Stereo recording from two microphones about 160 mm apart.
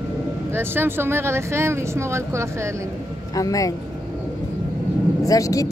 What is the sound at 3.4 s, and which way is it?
Speech, 20° left (ahead or behind).